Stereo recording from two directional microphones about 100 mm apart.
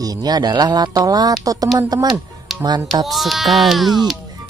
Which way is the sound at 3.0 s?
Centre (ahead or behind).